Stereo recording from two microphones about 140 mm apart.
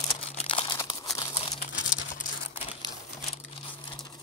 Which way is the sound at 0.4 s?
40° left (ahead or behind).